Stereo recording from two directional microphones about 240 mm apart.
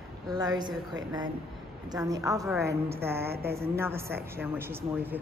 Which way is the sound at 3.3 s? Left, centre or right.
Right.